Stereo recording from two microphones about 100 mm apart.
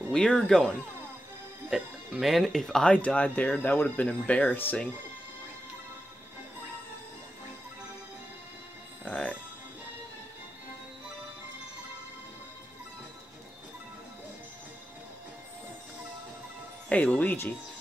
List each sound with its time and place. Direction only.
0.1 s speech: 5° left (ahead or behind)
1.7 s speech: centre (ahead or behind); by 4.8 s 15° left (ahead or behind)
9.0 s music: 10° left (ahead or behind)
16.9 s speech: 15° left (ahead or behind)